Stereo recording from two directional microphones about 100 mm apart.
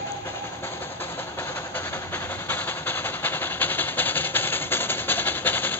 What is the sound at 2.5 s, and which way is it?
Train, 20° left (ahead or behind).